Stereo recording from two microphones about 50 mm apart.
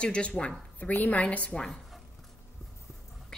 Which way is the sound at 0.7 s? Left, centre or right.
Left.